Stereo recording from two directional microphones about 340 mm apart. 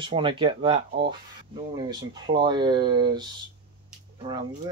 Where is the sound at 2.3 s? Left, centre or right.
Centre.